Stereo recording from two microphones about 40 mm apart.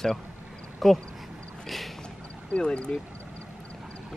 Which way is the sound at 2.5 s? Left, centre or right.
Left.